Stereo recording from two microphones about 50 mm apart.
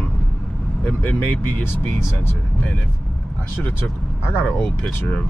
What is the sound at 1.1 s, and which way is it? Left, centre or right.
Speech, left.